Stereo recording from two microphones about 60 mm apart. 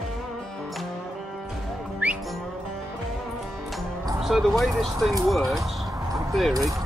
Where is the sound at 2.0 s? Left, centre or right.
Right.